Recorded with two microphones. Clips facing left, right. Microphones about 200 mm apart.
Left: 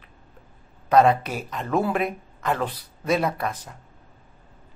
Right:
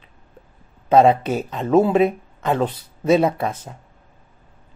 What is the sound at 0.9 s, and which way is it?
Speech, 25° right (ahead or behind).